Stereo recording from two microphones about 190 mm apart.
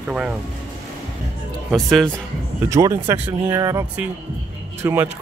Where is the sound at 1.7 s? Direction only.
Centre (ahead or behind).